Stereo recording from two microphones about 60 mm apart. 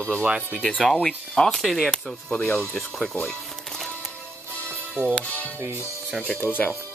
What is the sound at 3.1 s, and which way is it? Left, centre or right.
Music, centre.